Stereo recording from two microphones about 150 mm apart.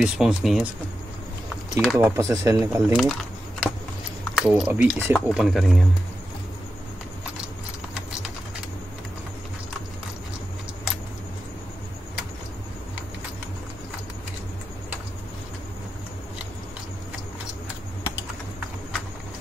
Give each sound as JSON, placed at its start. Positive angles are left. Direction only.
{"t": 0.0, "sound": "speech", "side_deg": -5}
{"t": 1.8, "sound": "speech", "side_deg": 0}
{"t": 2.0, "sound": "speech", "side_deg": -20}
{"t": 2.9, "sound": "a sound", "side_deg": -5}
{"t": 4.2, "sound": "speech", "side_deg": -5}